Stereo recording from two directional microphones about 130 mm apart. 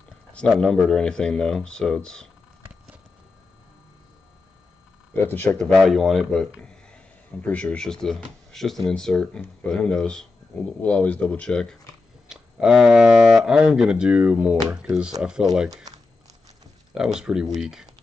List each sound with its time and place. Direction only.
0.3 s speech: 5° left (ahead or behind)
5.1 s speech: 15° left (ahead or behind)
5.6 s speech: centre (ahead or behind)
12.3 s speech: 5° right (ahead or behind)
16.9 s speech: 5° right (ahead or behind)